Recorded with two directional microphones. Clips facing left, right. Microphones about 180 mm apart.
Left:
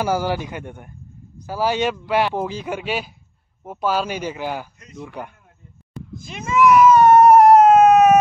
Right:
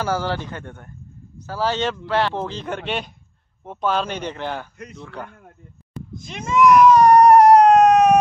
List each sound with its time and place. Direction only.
0.0 s a man's voice: 10° left (ahead or behind)
6.1 s baby cry: 5° left (ahead or behind)